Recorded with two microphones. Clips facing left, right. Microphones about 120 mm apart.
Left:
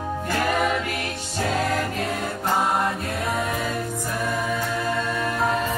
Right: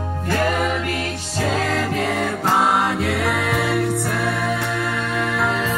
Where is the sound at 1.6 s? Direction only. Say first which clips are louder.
Right 3 dB; 90° right.